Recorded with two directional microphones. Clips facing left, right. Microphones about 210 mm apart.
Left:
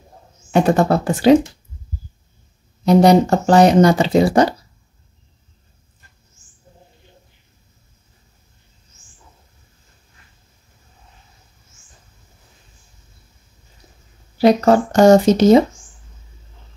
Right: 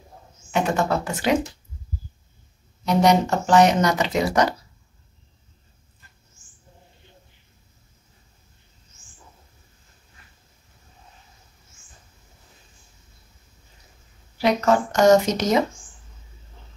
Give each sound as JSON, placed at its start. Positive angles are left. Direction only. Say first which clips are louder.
{"t": 0.5, "sound": "speech", "louder": "left 7 dB", "side_deg": 35}
{"t": 2.8, "sound": "speech", "louder": "left 7 dB", "side_deg": 35}
{"t": 14.4, "sound": "speech", "louder": "left 7 dB", "side_deg": 35}